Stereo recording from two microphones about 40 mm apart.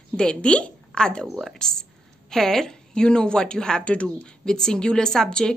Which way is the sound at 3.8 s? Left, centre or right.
Left.